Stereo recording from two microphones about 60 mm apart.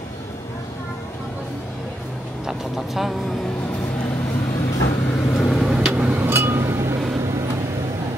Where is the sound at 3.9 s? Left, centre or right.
Left.